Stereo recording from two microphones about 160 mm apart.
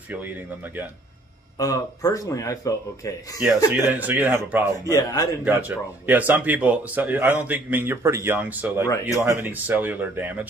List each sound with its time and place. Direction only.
1.6 s speech: 20° left (ahead or behind)
3.4 s speech: 10° right (ahead or behind)
4.8 s speech: 20° left (ahead or behind)
5.4 s speech: 10° right (ahead or behind)